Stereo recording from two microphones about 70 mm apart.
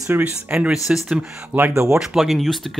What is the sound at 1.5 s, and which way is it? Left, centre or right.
Speech, centre.